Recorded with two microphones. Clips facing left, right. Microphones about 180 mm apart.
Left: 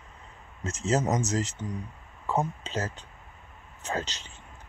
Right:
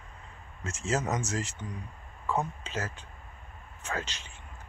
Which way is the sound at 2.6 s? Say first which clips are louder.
Left 3 dB; 35° left (ahead or behind).